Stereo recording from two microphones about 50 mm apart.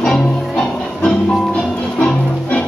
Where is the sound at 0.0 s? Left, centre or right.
Centre.